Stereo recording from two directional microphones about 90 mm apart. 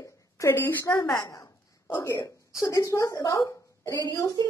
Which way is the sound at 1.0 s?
45° left (ahead or behind).